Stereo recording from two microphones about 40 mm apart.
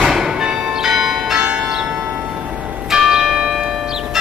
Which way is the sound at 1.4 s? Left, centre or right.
Right.